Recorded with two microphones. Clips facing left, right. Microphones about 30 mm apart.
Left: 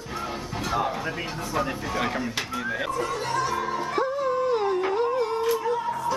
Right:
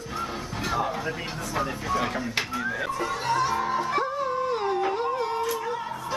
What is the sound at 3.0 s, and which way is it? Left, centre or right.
Music, centre.